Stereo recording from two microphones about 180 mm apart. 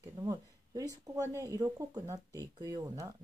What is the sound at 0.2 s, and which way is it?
Speech, 20° right (ahead or behind).